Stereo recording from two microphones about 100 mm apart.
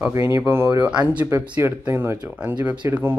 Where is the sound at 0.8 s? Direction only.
15° right (ahead or behind).